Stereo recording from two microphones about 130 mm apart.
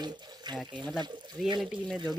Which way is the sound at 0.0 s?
35° right (ahead or behind).